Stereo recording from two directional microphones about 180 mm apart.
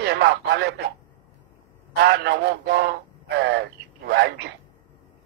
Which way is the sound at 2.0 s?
65° right (ahead or behind).